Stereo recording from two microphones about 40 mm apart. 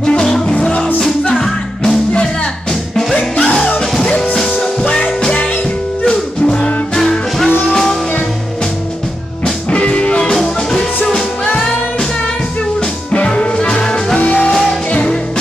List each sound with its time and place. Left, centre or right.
0.0 s music: centre
3.2 s music: left
4.8 s music: left
7.0 s music: centre
9.7 s music: left
10.3 s music: centre
13.1 s music: left